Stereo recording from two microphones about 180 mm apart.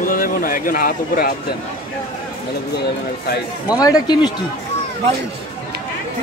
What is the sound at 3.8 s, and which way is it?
Speech, 20° left (ahead or behind).